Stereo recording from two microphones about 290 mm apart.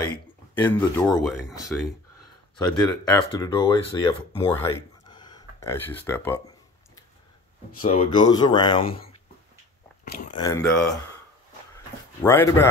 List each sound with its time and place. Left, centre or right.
0.0 s speech: centre
3.1 s speech: centre
4.6 s a sound: centre
7.8 s speech: centre
10.4 s speech: centre
11.7 s a sound: centre